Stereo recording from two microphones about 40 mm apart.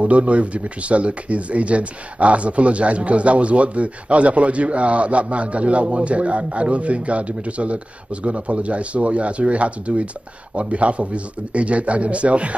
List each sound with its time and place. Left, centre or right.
0.0 s speech: right